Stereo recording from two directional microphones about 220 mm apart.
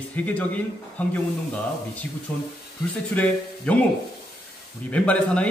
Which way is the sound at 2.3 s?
5° left (ahead or behind).